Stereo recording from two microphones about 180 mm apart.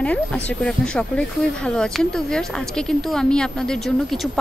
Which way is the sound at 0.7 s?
5° left (ahead or behind).